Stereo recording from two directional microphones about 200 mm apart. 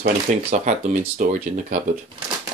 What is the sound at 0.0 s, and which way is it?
Speech, 35° right (ahead or behind).